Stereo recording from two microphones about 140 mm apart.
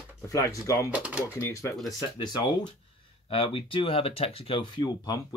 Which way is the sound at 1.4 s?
20° left (ahead or behind).